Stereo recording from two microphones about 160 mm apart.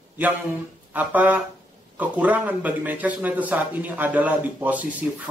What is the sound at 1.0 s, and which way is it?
A man's voice, 10° right (ahead or behind).